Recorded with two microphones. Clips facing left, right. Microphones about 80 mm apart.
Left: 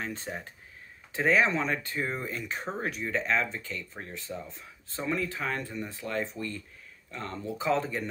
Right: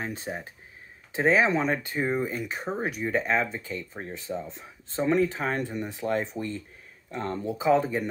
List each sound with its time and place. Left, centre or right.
0.1 s speech: centre